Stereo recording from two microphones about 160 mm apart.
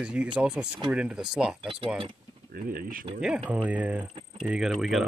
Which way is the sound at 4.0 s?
35° right (ahead or behind).